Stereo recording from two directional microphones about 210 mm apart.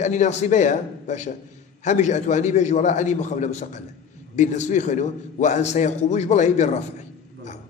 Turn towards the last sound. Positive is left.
turn(degrees=35)  # may be behind; listen again after turning